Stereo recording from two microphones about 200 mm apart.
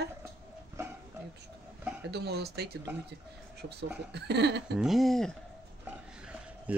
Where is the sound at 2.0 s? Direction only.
55° right (ahead or behind).